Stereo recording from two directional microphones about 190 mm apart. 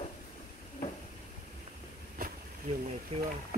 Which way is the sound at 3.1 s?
30° right (ahead or behind).